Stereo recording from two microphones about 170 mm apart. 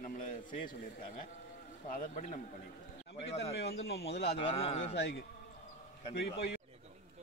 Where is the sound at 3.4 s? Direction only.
75° left (ahead or behind).